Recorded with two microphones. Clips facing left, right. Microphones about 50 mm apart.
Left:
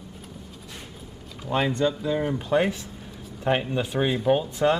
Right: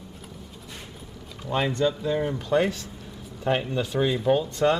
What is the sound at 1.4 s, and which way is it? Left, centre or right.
Speech, centre.